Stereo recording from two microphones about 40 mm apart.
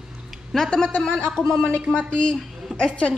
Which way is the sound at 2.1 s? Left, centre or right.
Left.